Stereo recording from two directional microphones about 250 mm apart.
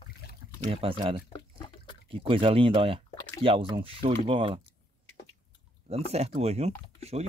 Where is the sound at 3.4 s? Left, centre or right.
Right.